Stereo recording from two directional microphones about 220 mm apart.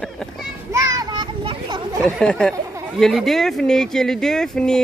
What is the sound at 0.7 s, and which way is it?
Children playing, 15° right (ahead or behind).